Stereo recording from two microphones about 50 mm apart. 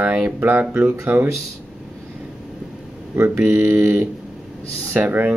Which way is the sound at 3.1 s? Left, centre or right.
Right.